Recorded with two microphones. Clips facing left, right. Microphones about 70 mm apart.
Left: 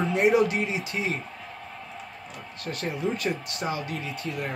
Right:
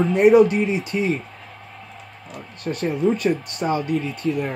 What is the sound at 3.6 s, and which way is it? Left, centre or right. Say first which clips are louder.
Speech: right 9 dB; right.